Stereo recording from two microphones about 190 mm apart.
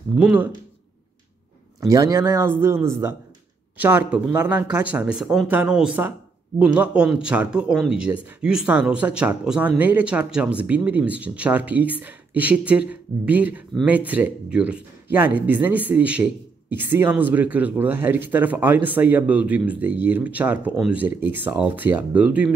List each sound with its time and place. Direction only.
0.1 s speech: 5° right (ahead or behind)
1.8 s speech: 20° right (ahead or behind)